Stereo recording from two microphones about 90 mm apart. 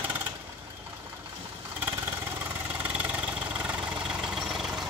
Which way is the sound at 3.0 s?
15° right (ahead or behind).